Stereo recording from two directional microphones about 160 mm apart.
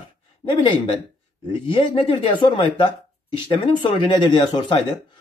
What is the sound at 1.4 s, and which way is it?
Speech, 30° left (ahead or behind).